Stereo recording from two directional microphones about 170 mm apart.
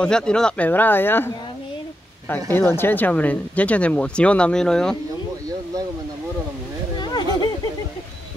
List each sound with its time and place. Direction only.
0.0 s speech: 5° left (ahead or behind)
2.5 s speech: 15° left (ahead or behind)
7.0 s a sound: 25° left (ahead or behind)